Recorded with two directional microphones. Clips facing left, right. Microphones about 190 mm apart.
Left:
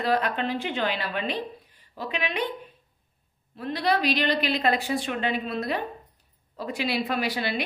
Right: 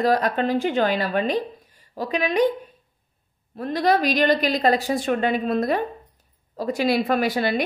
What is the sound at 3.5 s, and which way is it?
A woman's voice, 45° right (ahead or behind).